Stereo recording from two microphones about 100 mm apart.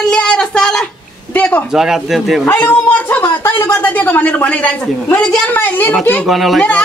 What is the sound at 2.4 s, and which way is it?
A woman's voice, 15° left (ahead or behind).